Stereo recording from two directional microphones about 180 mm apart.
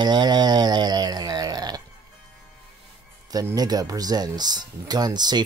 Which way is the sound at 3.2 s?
20° right (ahead or behind).